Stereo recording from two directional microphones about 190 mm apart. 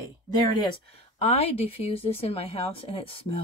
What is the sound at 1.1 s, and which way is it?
Speech, 30° left (ahead or behind).